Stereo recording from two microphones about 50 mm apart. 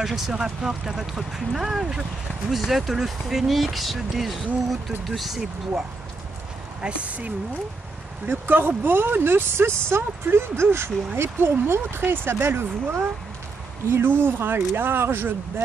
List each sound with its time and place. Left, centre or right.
0.0 s speech: centre
6.8 s speech: right
8.3 s speech: right
11.1 s speech: right
14.0 s speech: right